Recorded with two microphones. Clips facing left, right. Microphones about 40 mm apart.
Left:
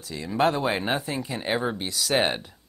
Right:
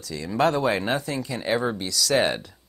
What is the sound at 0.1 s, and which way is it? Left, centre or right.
Speech, left.